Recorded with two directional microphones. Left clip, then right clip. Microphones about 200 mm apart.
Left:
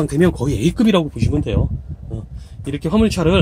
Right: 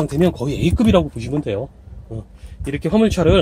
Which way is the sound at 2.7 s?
20° left (ahead or behind).